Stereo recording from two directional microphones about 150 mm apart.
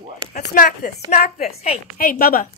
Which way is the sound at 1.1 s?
85° left.